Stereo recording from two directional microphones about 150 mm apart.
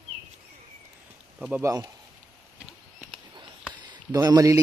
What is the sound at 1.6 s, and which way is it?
Speech, 20° right (ahead or behind).